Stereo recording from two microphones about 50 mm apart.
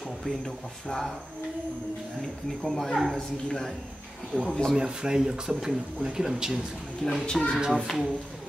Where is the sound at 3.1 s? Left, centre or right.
Centre.